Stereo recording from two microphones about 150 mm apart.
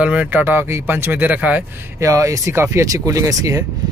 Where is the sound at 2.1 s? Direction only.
20° right (ahead or behind).